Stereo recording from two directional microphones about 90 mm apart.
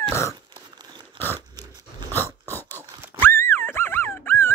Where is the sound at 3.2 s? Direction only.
25° left (ahead or behind).